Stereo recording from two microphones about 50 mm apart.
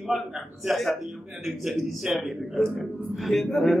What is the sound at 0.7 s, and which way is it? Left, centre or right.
Speech, centre.